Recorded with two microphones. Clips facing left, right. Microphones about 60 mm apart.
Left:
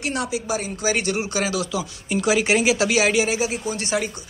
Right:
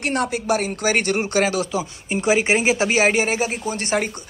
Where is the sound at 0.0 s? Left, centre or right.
Right.